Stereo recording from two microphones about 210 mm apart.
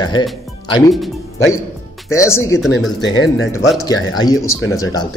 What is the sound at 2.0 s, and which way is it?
Speech, 15° left (ahead or behind).